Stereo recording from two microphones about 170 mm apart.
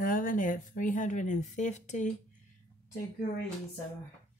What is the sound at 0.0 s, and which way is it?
Speech, 55° left (ahead or behind).